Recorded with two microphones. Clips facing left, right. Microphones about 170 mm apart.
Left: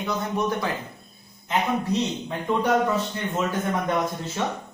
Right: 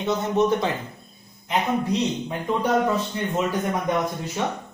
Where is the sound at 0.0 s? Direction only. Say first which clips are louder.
Right 5 dB; 25° right (ahead or behind).